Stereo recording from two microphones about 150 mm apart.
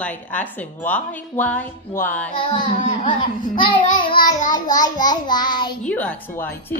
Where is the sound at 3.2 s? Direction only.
35° left (ahead or behind).